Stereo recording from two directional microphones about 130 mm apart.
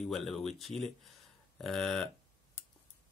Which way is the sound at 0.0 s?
Centre (ahead or behind).